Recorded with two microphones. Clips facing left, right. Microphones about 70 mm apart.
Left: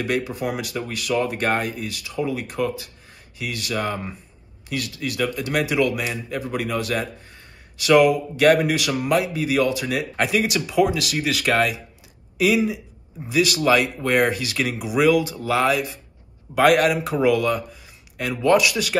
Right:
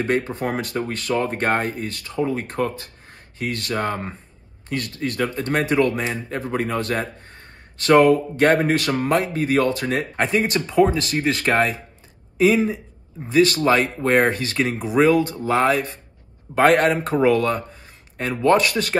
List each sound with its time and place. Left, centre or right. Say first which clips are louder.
0.0 s speech: right 2 dB; right